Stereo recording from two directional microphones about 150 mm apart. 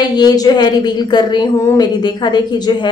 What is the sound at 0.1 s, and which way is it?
Speech, 25° left (ahead or behind).